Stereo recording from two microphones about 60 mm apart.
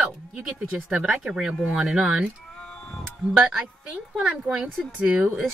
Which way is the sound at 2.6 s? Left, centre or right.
Centre.